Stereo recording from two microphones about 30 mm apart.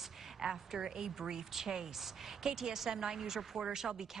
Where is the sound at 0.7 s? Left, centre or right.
Centre.